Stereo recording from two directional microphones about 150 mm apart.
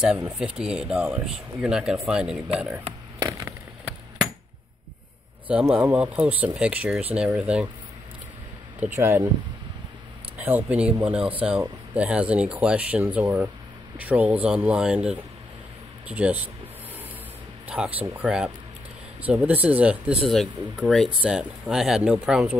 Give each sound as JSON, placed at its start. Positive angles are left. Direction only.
{"t": 0.0, "sound": "speech", "side_deg": -5}
{"t": 3.2, "sound": "a sound", "side_deg": -20}
{"t": 5.5, "sound": "speech", "side_deg": -10}
{"t": 8.7, "sound": "speech", "side_deg": -15}
{"t": 10.3, "sound": "speech", "side_deg": -10}
{"t": 17.6, "sound": "speech", "side_deg": -10}